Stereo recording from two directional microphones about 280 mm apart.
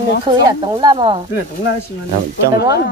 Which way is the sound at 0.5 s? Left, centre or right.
Centre.